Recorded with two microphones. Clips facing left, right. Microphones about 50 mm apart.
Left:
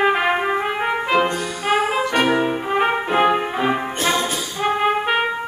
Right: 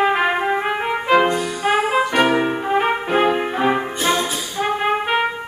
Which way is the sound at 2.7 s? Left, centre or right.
Centre.